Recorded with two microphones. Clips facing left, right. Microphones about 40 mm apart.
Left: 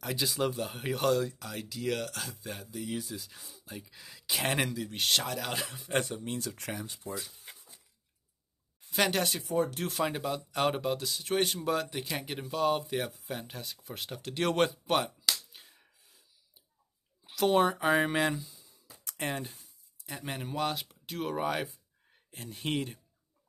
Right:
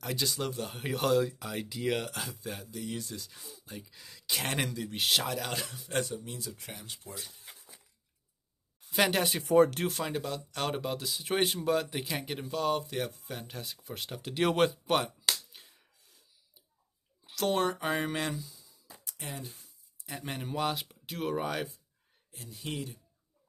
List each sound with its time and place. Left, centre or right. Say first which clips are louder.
0.0 s speech: left 2 dB; centre
5.7 s a man's voice: left 2 dB; centre
6.0 s speech: left 3 dB; left
6.5 s speech: left 6 dB; left
8.9 s speech: right 1 dB; centre
9.5 s speech: right 10 dB; right
9.8 s speech: left 2 dB; centre
10.8 s speech: left 2 dB; centre
15.5 s finger snapping: even; centre
15.8 s sneeze: left 1 dB; centre
17.2 s speech: left 4 dB; centre
19.0 s speech: left 7 dB; left
20.1 s speech: even; centre
22.3 s speech: left 5 dB; left